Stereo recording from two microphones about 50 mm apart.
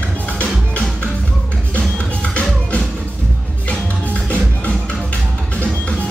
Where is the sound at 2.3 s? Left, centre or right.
Left.